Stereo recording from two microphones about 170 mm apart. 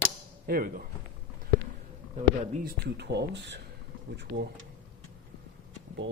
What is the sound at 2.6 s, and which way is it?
Speech, 80° right.